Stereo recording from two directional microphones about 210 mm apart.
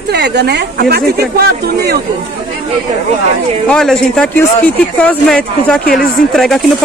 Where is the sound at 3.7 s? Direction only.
5° left (ahead or behind).